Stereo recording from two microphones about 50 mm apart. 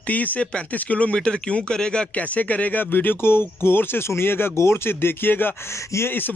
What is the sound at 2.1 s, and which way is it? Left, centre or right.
Speech, left.